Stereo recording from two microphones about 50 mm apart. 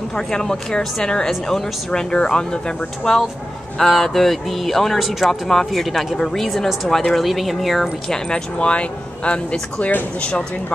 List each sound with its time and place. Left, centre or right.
0.1 s speech: centre
3.7 s speech: centre
8.1 s speech: left